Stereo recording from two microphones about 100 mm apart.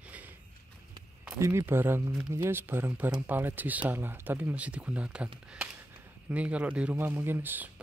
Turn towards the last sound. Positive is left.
turn(degrees=-20)  # may be behind; listen again after turning